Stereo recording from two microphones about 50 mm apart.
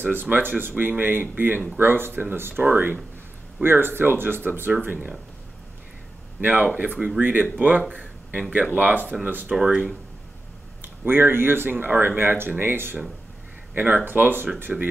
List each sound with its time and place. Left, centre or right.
0.0 s speech: right
2.6 s speech: right
6.4 s speech: right
7.9 s a sound: right
8.4 s speech: right
8.7 s speech: right
10.8 s speech: right
13.7 s speech: right